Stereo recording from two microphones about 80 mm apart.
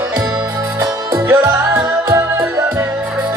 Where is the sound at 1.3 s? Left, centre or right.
Right.